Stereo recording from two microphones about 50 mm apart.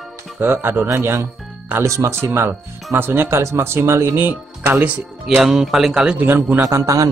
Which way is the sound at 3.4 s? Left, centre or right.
Right.